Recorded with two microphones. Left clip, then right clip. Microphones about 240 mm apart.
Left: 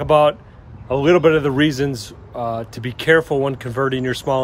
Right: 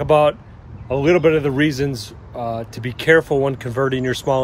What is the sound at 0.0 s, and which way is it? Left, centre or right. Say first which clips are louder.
Speech: left 1 dB; centre.